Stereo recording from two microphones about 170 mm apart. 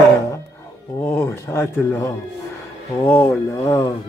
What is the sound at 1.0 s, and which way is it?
Speech, 15° left (ahead or behind).